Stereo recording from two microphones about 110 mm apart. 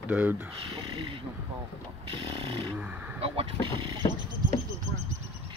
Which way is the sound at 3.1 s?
60° right (ahead or behind).